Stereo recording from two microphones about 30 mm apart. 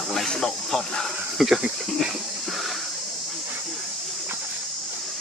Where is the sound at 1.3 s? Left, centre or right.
Centre.